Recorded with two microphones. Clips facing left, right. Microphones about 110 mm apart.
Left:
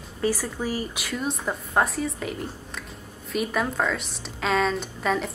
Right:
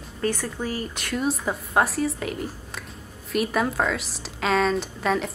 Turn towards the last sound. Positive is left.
turn(degrees=0)  # may be behind; listen again after turning